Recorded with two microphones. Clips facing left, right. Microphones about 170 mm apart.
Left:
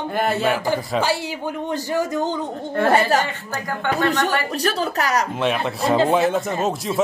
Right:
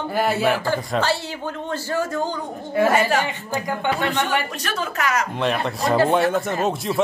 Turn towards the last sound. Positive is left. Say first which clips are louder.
# even
turn(degrees=0)  # may be behind; listen again after turning